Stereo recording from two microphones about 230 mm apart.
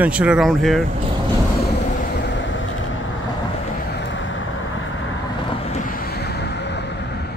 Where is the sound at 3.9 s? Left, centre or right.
Left.